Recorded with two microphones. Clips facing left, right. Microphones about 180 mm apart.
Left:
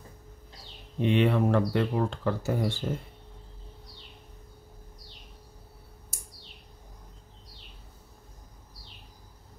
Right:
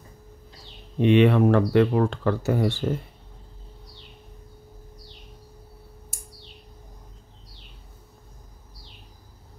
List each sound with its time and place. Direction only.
1.0 s speech: 75° right (ahead or behind)